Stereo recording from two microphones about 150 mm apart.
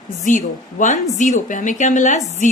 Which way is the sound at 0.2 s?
60° left (ahead or behind).